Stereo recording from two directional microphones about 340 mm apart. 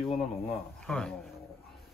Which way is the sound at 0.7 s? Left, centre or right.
Centre.